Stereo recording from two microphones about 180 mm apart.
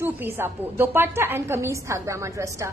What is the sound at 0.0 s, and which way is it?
A woman's voice, 10° right (ahead or behind).